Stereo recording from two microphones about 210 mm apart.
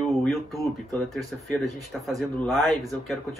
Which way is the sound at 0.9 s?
Centre (ahead or behind).